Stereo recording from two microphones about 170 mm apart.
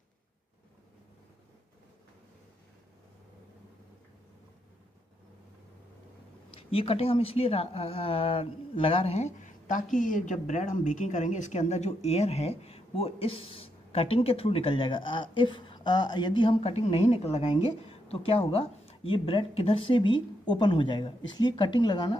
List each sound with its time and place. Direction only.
6.5 s speech: 35° left (ahead or behind)